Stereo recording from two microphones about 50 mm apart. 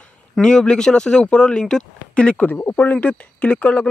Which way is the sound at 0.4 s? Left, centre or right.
Centre.